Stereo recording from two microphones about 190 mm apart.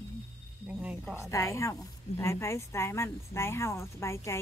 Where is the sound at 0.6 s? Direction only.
5° right (ahead or behind).